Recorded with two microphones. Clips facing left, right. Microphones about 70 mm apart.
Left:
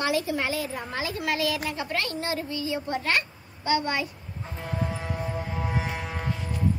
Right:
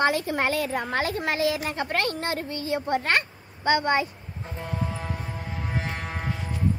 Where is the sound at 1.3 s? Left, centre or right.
Right.